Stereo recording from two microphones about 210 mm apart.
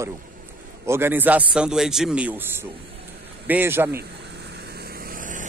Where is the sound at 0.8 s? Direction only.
10° right (ahead or behind).